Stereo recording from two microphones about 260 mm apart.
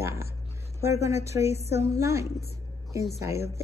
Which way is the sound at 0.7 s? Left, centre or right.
Centre.